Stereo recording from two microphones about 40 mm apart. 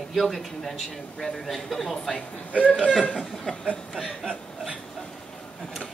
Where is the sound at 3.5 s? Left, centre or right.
Left.